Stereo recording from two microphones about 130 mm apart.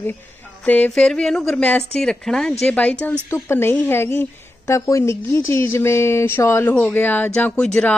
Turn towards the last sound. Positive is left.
turn(degrees=10)  # may be behind; listen again after turning